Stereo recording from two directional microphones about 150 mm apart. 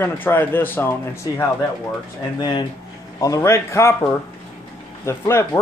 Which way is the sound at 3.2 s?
20° left (ahead or behind).